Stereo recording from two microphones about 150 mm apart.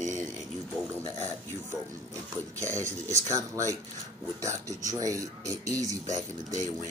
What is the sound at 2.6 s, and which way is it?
Speech, 20° right (ahead or behind).